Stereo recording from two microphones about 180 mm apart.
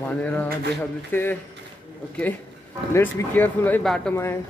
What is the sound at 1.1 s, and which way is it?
Speech, 10° left (ahead or behind).